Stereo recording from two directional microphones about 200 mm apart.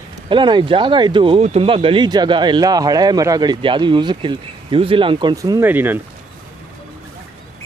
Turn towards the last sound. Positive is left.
turn(degrees=-10)  # may be behind; listen again after turning